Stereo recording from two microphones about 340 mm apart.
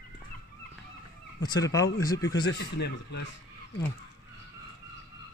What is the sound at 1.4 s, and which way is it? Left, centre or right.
Speech, centre.